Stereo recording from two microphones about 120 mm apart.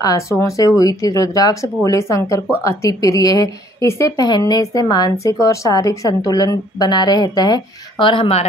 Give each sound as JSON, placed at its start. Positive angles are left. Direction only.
{"t": 0.0, "sound": "a woman's voice", "side_deg": 30}